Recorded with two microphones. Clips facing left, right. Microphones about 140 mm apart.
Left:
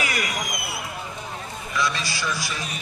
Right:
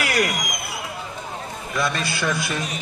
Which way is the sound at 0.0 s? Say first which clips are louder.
Right 5 dB; 65° right (ahead or behind).